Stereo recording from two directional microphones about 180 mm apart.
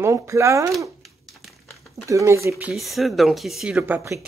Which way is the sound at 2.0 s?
15° right (ahead or behind).